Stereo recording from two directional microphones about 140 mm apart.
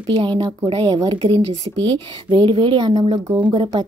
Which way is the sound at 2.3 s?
35° right (ahead or behind).